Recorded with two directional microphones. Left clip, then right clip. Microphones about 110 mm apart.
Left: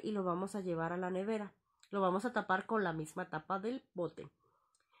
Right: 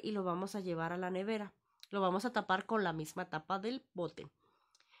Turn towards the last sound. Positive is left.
turn(degrees=-10)  # may be behind; listen again after turning